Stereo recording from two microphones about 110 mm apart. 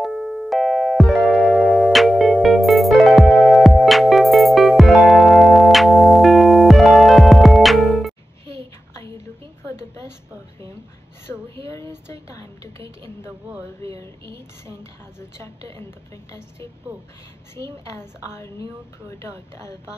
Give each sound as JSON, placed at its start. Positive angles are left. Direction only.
{"t": 0.0, "sound": "music", "side_deg": 0}
{"t": 11.6, "sound": "a sound", "side_deg": 25}
{"t": 14.8, "sound": "a woman's voice", "side_deg": 25}
{"t": 17.9, "sound": "a woman's voice", "side_deg": 25}